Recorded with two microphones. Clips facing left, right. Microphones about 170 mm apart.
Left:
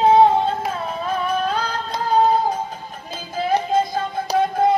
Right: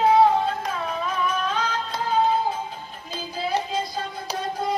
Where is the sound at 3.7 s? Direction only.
50° left (ahead or behind).